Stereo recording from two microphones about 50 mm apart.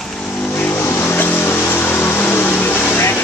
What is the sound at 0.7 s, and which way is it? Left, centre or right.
Vehicle, left.